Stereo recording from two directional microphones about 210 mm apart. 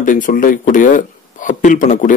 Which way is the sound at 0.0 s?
40° left (ahead or behind).